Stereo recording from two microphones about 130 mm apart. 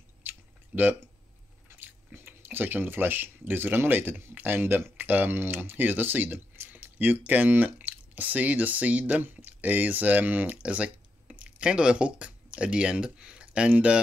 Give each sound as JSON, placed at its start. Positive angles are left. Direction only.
{"t": 0.2, "sound": "chewing", "side_deg": -15}
{"t": 1.8, "sound": "speech", "side_deg": -15}